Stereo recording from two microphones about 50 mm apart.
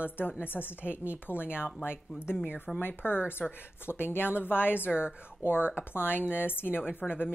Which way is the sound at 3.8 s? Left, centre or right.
Left.